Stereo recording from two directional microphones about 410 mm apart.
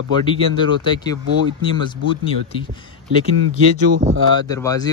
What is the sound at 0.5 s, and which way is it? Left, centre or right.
Speech, centre.